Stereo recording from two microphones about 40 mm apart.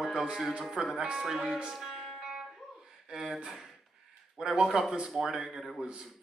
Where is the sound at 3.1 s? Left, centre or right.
Centre.